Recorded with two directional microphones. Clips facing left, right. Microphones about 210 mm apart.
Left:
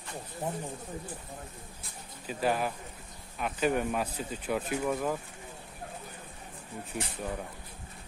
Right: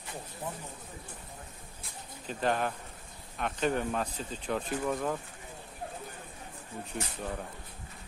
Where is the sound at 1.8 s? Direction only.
5° left (ahead or behind).